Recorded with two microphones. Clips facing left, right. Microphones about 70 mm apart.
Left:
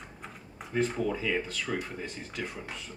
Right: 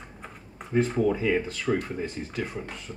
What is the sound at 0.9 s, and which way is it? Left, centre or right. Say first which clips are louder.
Speech: right 6 dB; centre.